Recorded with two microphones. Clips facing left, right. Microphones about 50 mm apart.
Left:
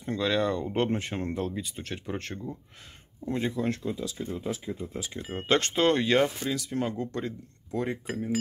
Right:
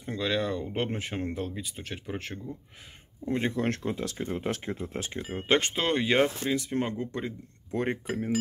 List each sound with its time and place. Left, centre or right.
0.0 s speech: centre
3.3 s speech: right
3.5 s speech: right
5.5 s speech: centre
6.5 s speech: right
7.0 s speech: centre
7.7 s speech: right